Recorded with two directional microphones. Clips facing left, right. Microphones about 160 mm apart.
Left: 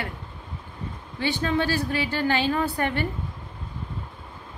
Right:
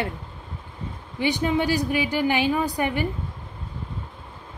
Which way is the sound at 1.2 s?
15° right (ahead or behind).